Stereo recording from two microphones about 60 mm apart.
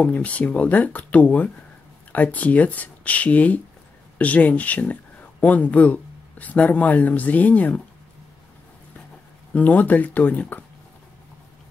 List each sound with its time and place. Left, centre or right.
0.0 s speech: left
9.5 s speech: left